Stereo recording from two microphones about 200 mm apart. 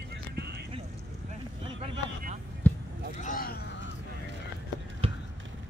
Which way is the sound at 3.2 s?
45° left (ahead or behind).